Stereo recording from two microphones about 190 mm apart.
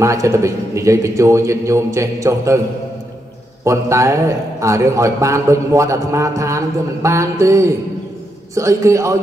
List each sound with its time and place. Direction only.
0.0 s a man's voice: 15° right (ahead or behind)
3.6 s a man's voice: 15° right (ahead or behind)